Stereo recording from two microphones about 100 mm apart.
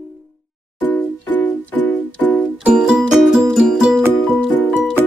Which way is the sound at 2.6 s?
10° right (ahead or behind).